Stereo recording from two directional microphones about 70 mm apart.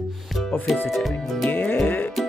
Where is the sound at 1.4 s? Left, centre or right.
Left.